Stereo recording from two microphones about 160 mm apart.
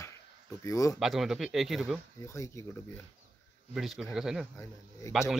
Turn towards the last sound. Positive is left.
turn(degrees=0)  # may be behind; listen again after turning